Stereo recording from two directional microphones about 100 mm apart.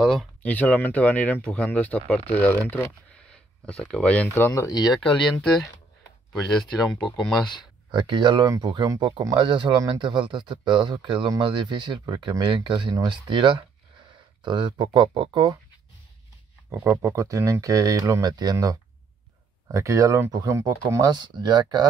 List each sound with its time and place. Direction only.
0.4 s speech: 15° left (ahead or behind)
3.6 s speech: 5° left (ahead or behind)
4.4 s speech: 30° left (ahead or behind)
6.4 s speech: 5° left (ahead or behind)
7.9 s speech: 50° right (ahead or behind)
16.7 s speech: 25° right (ahead or behind)
21.0 s speech: 45° right (ahead or behind)